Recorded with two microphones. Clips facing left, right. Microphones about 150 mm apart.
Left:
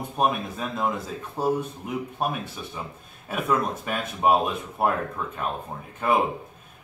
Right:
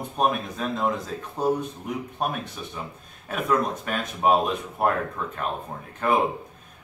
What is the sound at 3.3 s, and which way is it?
Speech, 5° left (ahead or behind).